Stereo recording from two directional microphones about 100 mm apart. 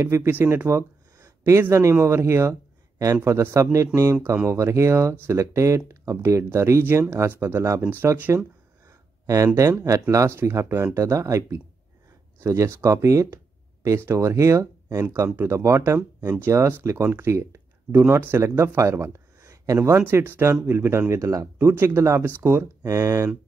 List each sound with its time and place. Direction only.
0.0 s speech: 25° right (ahead or behind)
9.2 s speech: 35° right (ahead or behind)
20.0 s speech: 20° right (ahead or behind)